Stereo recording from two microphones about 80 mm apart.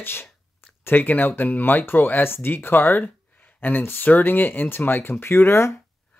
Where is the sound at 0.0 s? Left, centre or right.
Left.